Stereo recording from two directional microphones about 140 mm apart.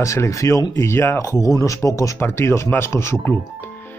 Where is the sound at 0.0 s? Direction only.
20° left (ahead or behind).